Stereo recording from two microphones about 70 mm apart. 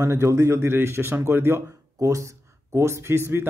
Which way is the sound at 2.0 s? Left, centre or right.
Right.